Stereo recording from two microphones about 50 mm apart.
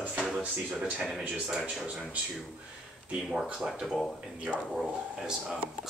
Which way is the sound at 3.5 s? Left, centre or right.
Centre.